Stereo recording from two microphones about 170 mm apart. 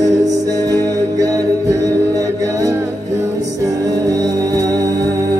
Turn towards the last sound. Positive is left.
turn(degrees=-20)  # may be behind; listen again after turning